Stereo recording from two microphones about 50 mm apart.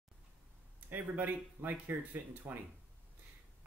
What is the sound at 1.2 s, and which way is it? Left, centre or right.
Speech, right.